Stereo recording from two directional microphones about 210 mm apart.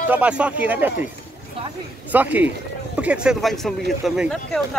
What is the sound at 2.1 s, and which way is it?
Speech, 10° right (ahead or behind).